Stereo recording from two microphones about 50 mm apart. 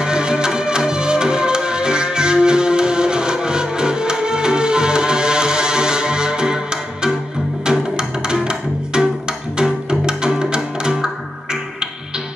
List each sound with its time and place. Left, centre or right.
0.0 s music: centre
8.3 s music: centre